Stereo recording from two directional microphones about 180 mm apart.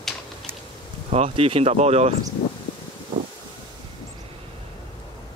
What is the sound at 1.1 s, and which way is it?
Speech, 35° right (ahead or behind).